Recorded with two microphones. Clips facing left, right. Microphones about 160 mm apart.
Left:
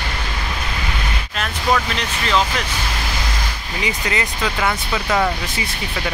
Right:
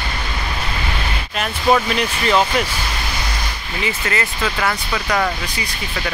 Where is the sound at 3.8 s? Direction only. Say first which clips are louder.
Right 1 dB; 15° left (ahead or behind).